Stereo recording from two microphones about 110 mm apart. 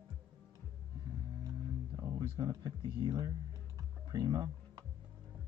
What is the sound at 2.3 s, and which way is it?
Speech, 40° right (ahead or behind).